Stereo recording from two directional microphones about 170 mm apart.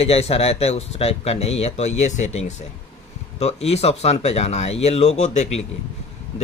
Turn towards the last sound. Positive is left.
turn(degrees=40)  # may be behind; listen again after turning